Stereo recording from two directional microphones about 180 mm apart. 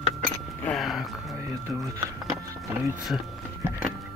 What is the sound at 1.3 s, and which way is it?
Speech, 15° right (ahead or behind).